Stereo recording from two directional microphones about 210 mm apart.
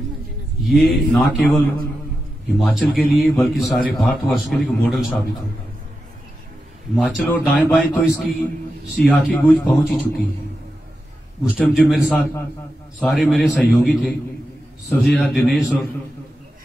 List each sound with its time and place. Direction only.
0.6 s a man's voice: centre (ahead or behind)
7.0 s a man's voice: 5° right (ahead or behind)
11.5 s a man's voice: centre (ahead or behind)